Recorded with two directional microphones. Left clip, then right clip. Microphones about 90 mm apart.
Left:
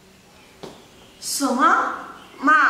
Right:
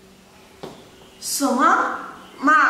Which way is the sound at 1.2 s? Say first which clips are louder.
Even; 5° right (ahead or behind).